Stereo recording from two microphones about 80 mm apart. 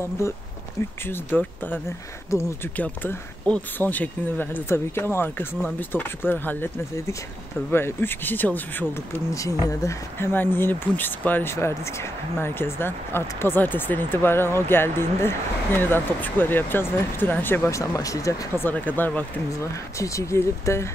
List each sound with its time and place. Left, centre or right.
1.0 s speech: left
2.3 s speech: left
2.7 s speech: left
7.7 s speech: left
9.3 s speech: left
10.1 s speech: left
11.5 s speech: left
17.6 s speech: left
18.6 s speech: left
19.6 s speech: left